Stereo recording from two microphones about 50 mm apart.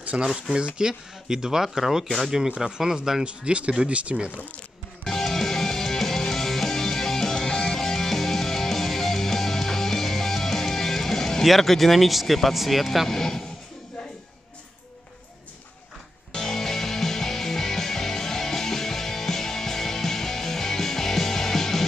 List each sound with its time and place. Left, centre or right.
0.2 s speech: centre
5.0 s music: centre
11.4 s speech: centre
16.3 s music: centre